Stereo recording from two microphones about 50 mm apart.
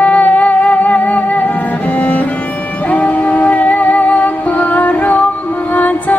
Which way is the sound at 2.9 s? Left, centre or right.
Left.